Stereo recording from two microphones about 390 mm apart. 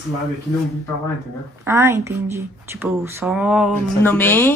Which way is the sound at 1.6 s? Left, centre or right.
Centre.